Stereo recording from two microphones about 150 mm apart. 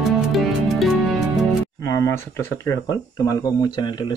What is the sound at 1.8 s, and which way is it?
Speech, 20° left (ahead or behind).